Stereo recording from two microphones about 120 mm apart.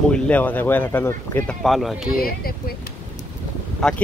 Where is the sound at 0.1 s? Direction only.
15° left (ahead or behind).